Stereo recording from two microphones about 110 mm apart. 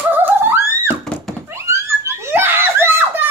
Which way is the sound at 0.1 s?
15° right (ahead or behind).